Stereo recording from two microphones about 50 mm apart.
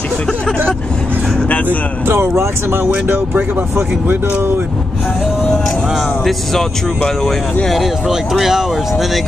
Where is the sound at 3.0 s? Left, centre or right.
Right.